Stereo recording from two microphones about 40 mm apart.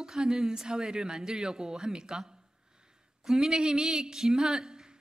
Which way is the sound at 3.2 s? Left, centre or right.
Centre.